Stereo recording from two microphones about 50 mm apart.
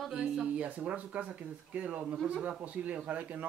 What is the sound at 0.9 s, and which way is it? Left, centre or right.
Speech, right.